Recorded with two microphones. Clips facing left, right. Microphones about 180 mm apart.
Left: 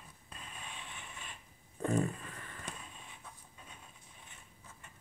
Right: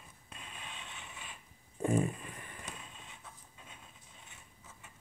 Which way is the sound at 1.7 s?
10° right (ahead or behind).